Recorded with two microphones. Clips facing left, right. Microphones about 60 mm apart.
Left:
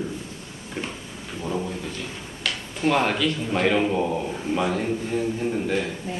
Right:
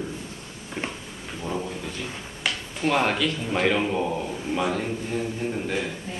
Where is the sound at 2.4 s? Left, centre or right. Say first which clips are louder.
Right 1 dB; centre.